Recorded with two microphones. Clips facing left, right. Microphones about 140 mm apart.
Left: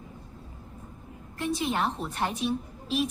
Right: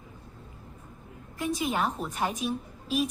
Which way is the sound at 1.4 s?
10° right (ahead or behind).